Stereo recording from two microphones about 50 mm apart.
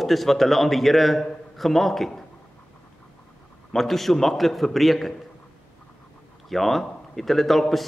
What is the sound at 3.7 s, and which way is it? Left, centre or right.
A man's voice, centre.